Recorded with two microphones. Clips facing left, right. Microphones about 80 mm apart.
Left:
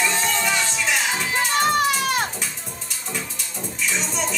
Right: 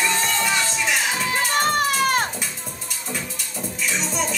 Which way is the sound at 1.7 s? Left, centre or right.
Right.